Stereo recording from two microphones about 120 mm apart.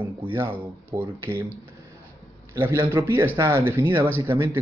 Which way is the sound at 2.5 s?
20° right (ahead or behind).